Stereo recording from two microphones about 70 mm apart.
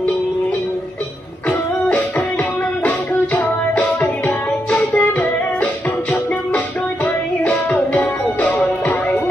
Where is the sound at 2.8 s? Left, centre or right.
Left.